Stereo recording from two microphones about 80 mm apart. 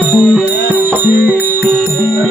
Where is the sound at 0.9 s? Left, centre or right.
Right.